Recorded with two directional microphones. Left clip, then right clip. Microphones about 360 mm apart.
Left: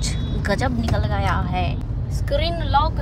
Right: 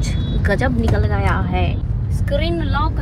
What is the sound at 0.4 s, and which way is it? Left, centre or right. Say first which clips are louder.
Speech: right 4 dB; centre.